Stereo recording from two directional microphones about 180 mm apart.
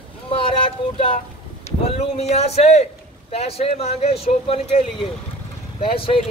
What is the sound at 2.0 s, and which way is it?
A man's voice, 35° left (ahead or behind).